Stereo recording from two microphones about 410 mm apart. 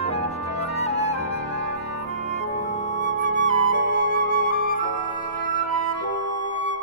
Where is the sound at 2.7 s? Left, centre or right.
Centre.